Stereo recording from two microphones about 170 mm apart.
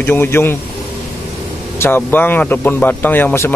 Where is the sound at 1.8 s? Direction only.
10° left (ahead or behind).